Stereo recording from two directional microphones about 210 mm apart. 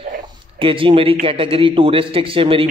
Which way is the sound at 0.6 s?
25° right (ahead or behind).